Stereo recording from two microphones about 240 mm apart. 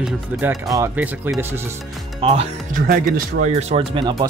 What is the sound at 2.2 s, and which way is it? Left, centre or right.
Speech, right.